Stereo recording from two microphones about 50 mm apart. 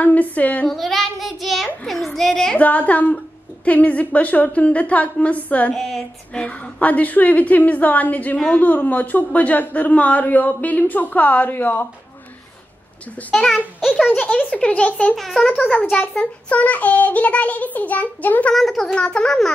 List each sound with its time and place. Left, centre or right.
0.0 s a man's voice: left
0.7 s child singing: centre
2.5 s a man's voice: left
5.8 s speech: centre
6.3 s a man's voice: left
13.3 s speech: centre
13.7 s a child's voice: centre
14.0 s a child's voice: left
15.1 s a child's voice: centre
15.4 s a child's voice: centre
18.5 s speech: centre
18.9 s speech: centre